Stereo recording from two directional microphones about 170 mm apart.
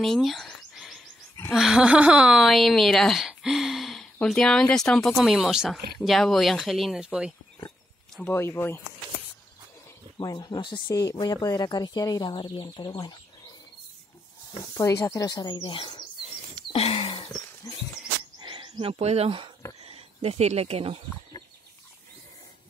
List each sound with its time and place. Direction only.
0.0 s a sound: centre (ahead or behind)
1.5 s a woman's voice: centre (ahead or behind)
8.2 s speech: 15° left (ahead or behind)
10.1 s speech: 25° left (ahead or behind)
14.7 s speech: 20° left (ahead or behind)
16.7 s a sound: 35° left (ahead or behind)
18.4 s speech: 30° right (ahead or behind)